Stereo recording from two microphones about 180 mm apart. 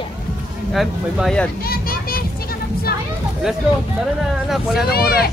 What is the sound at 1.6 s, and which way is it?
Children playing, 55° left (ahead or behind).